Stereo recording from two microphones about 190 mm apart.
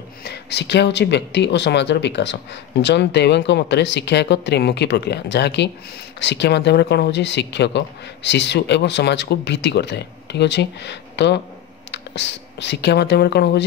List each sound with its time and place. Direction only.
0.2 s speech: 60° left (ahead or behind)